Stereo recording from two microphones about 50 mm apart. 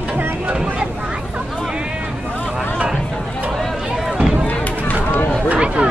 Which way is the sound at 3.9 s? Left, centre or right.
Centre.